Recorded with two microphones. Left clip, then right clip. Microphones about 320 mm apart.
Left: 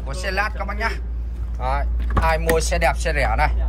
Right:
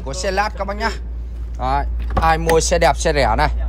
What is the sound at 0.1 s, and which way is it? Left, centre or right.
Speech, centre.